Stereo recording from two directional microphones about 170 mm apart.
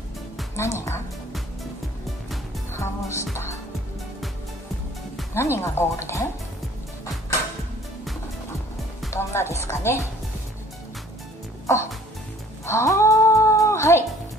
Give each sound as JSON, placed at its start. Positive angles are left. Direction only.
{"t": 0.6, "sound": "speech", "side_deg": 15}
{"t": 2.7, "sound": "music", "side_deg": 15}
{"t": 5.3, "sound": "speech", "side_deg": 15}
{"t": 9.1, "sound": "speech", "side_deg": 15}
{"t": 11.6, "sound": "music", "side_deg": 15}
{"t": 12.6, "sound": "cat", "side_deg": 15}